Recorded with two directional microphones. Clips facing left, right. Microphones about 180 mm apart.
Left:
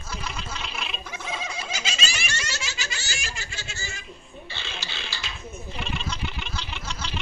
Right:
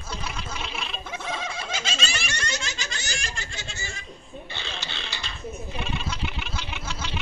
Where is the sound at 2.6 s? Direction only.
5° left (ahead or behind).